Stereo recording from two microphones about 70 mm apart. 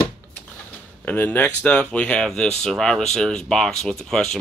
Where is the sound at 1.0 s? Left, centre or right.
Left.